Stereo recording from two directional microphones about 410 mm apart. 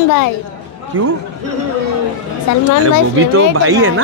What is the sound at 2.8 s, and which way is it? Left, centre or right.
Speech, right.